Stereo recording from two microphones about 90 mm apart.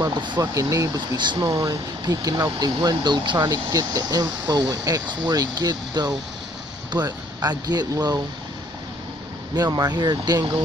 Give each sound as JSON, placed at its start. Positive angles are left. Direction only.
{"t": 0.1, "sound": "speech", "side_deg": -60}
{"t": 0.4, "sound": "speech", "side_deg": -35}
{"t": 0.9, "sound": "speech", "side_deg": -55}
{"t": 3.4, "sound": "speech", "side_deg": -40}
{"t": 9.6, "sound": "speech", "side_deg": -45}